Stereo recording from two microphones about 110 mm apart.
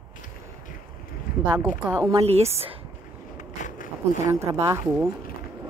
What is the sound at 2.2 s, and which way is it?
Speech, 70° right (ahead or behind).